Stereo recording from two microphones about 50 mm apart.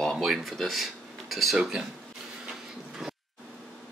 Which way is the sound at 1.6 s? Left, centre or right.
Right.